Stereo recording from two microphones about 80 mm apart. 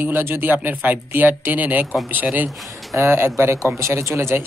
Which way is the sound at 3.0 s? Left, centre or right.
Right.